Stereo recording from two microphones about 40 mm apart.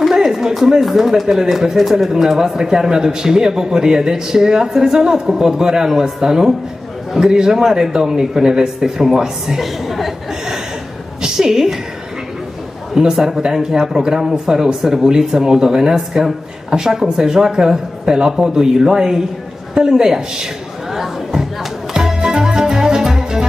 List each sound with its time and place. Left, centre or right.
0.0 s a sound: centre
0.7 s a woman's voice: centre
1.2 s speech: centre
9.6 s a woman's voice: centre
11.2 s a woman's voice: centre
13.0 s speech: centre
21.9 s music: centre